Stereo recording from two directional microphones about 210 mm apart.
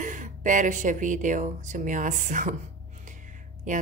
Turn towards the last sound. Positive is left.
turn(degrees=-35)  # may be behind; listen again after turning